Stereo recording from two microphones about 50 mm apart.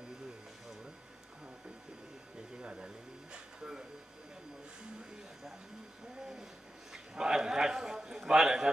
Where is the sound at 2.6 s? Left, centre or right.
Centre.